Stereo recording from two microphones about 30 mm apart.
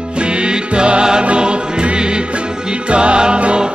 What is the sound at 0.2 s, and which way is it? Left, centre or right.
Music, right.